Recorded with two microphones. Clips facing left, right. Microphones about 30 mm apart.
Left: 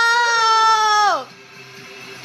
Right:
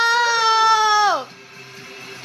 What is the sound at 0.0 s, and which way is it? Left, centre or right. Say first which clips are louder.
Baby cry: left 1 dB; centre.